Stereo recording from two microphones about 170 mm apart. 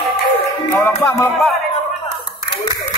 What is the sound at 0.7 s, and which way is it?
Music, 10° left (ahead or behind).